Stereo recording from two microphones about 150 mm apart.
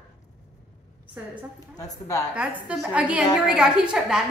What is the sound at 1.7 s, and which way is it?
Speech, 25° left (ahead or behind).